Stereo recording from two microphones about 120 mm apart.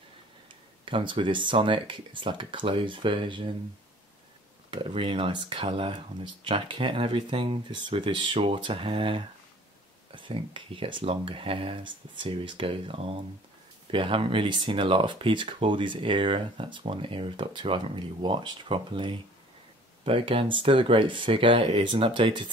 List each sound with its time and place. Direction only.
0.5 s speech: 45° right (ahead or behind)
4.6 s speech: 50° right (ahead or behind)